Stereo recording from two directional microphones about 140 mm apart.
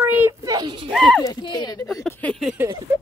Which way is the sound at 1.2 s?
35° left (ahead or behind).